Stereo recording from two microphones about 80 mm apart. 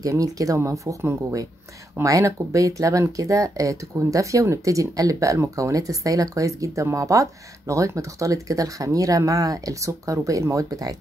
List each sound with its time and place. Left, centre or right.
0.0 s speech: right